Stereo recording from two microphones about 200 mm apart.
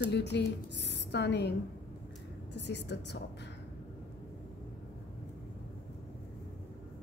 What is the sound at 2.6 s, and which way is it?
Speech, 60° left (ahead or behind).